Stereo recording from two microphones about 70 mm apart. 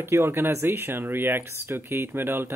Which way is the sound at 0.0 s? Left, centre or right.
Right.